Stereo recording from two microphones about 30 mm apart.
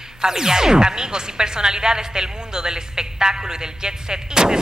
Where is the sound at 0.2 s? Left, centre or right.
Centre.